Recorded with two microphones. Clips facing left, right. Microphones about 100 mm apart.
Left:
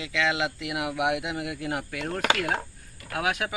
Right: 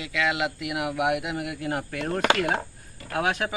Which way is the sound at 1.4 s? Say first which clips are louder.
Right 1 dB; 20° right (ahead or behind).